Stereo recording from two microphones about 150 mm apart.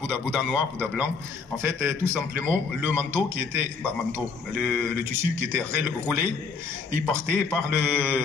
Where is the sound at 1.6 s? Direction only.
15° right (ahead or behind).